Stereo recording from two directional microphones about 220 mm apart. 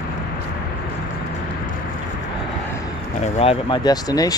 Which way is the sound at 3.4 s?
25° left (ahead or behind).